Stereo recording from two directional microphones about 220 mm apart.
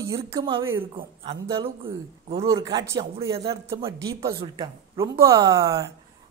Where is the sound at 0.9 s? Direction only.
20° right (ahead or behind).